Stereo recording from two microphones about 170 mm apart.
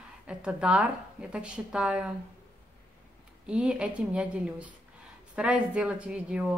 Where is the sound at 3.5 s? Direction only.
5° right (ahead or behind).